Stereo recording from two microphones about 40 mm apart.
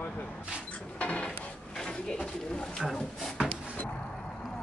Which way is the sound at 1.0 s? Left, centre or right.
Left.